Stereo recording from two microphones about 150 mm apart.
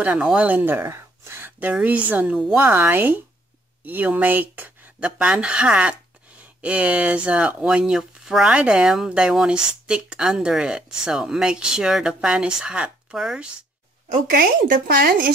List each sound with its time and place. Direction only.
0.0 s speech: 10° right (ahead or behind)
14.1 s speech: 75° right (ahead or behind)